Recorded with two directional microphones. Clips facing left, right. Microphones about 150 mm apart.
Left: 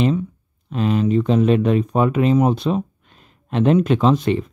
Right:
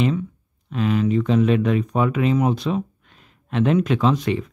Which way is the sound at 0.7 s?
30° left (ahead or behind).